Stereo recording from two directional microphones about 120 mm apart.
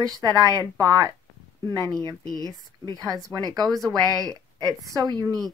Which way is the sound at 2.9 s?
30° right (ahead or behind).